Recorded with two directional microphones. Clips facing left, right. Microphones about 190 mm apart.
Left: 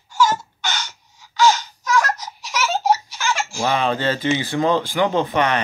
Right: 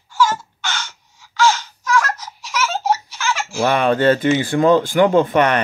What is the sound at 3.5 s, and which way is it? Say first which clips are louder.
Speech: right 6 dB; 55° right (ahead or behind).